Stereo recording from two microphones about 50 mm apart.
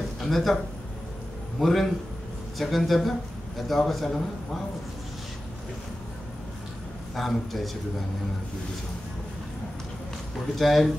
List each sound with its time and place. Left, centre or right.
0.2 s speech: centre
1.6 s speech: centre
7.2 s speech: centre
10.6 s speech: centre